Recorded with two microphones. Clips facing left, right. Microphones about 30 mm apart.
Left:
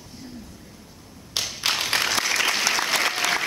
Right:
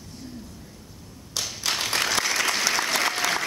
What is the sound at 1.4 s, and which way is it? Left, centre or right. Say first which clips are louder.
Clapping: left 3 dB; left.